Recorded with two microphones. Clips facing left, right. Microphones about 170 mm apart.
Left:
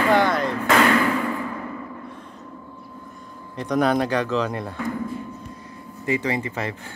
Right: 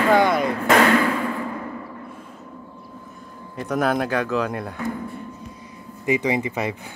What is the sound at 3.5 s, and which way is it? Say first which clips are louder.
Speech: left 1 dB; 5° right (ahead or behind).